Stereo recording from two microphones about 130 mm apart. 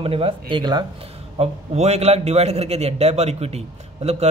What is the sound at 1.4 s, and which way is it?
A man's voice, 55° right (ahead or behind).